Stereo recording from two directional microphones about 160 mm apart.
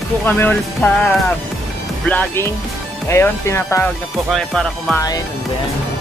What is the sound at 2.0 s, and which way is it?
Speech, 10° left (ahead or behind).